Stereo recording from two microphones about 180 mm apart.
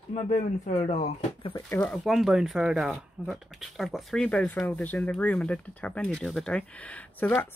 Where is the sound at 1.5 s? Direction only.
15° left (ahead or behind).